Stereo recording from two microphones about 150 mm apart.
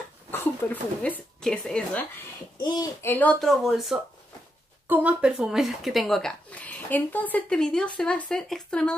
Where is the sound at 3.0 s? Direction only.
10° left (ahead or behind).